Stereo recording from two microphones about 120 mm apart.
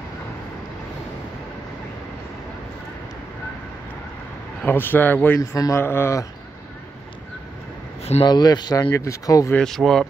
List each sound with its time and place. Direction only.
4.6 s a man's voice: 15° left (ahead or behind)
5.4 s speech: 30° left (ahead or behind)
8.2 s speech: 35° left (ahead or behind)
9.5 s speech: 5° left (ahead or behind)